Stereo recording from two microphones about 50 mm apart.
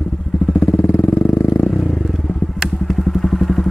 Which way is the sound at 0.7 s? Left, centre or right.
Left.